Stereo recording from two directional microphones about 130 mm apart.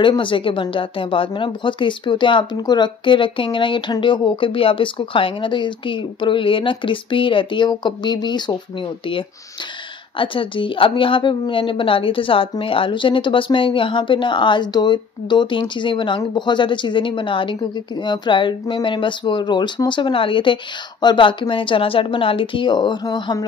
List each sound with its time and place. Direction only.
0.0 s a woman's voice: 40° left (ahead or behind)